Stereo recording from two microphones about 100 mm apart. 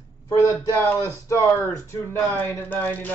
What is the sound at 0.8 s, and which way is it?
Speech, 30° left (ahead or behind).